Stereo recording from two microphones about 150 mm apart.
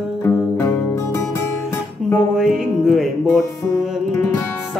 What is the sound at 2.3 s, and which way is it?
Music, 5° right (ahead or behind).